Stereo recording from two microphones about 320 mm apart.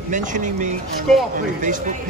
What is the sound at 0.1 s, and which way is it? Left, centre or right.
Speech, right.